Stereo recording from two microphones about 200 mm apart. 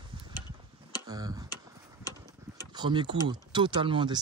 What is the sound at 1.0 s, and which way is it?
Tick-tock, 20° right (ahead or behind).